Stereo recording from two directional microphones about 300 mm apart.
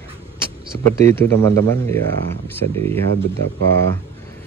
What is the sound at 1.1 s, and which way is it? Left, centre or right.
Speech, centre.